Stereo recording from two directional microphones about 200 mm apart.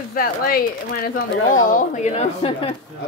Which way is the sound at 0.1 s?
50° left (ahead or behind).